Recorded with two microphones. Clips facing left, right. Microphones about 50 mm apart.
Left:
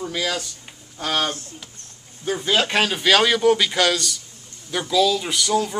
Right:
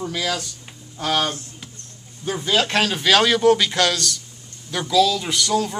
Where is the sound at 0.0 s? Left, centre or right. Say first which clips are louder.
Even; centre.